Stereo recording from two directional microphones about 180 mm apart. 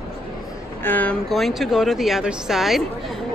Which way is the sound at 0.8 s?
10° left (ahead or behind).